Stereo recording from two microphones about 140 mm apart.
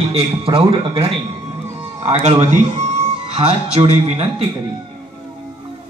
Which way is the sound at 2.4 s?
55° right (ahead or behind).